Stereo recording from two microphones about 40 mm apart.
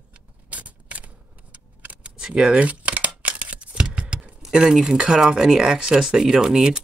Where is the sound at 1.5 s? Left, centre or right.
Right.